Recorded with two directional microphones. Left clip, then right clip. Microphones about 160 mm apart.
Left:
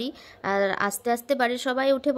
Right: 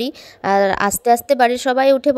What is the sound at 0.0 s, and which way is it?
A woman's voice, 45° right (ahead or behind).